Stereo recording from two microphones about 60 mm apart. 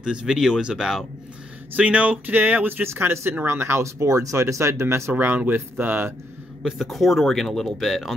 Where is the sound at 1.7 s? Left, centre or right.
Right.